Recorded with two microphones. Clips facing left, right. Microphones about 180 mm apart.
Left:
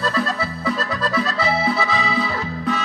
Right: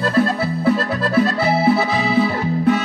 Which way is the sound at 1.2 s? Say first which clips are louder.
Right 7 dB; 60° right (ahead or behind).